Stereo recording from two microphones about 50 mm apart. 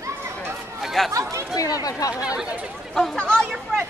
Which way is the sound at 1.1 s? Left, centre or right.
Right.